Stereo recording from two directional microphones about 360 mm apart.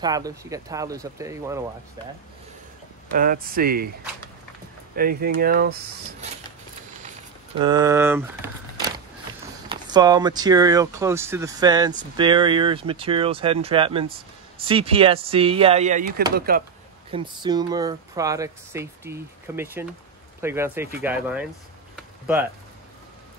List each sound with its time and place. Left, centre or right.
0.0 s speech: centre
3.2 s speech: right
4.9 s speech: right
7.6 s speech: centre
17.1 s speech: centre
21.9 s a sound: centre